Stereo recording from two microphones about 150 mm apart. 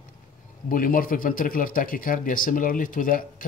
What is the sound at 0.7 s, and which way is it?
A man's voice, 65° left (ahead or behind).